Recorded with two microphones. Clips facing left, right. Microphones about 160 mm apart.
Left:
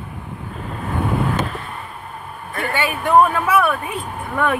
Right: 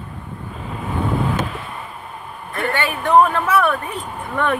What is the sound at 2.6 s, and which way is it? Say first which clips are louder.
Speech: even; 10° left (ahead or behind).